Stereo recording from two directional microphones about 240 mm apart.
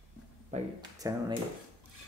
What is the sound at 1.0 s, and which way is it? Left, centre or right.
Speech, centre.